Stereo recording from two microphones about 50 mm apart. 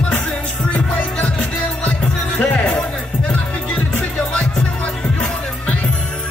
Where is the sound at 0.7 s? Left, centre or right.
Left.